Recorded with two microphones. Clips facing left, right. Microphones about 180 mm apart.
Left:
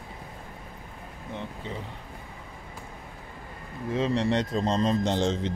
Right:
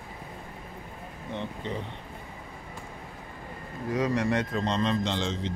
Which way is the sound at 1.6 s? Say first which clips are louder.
Right 4 dB; 5° left (ahead or behind).